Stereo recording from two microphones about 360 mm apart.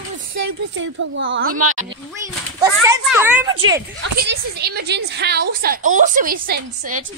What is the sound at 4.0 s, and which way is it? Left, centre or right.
A woman's voice, right.